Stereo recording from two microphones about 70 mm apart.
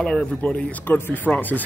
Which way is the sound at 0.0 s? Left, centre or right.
Centre.